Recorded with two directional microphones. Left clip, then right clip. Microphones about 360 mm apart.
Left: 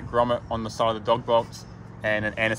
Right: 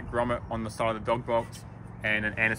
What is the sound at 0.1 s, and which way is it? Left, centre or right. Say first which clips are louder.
Speech: left 6 dB; centre.